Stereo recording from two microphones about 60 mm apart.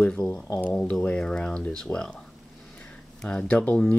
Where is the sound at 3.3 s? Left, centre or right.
Centre.